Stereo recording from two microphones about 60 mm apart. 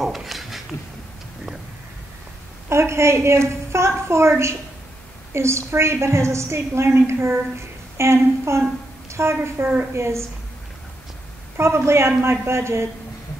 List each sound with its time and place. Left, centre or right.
0.0 s a sound: centre
2.7 s a woman's voice: right
11.5 s a woman's voice: right